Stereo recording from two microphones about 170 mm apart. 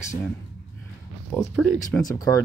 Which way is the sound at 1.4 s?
Centre (ahead or behind).